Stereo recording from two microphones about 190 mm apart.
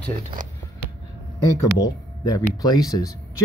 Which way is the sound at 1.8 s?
20° left (ahead or behind).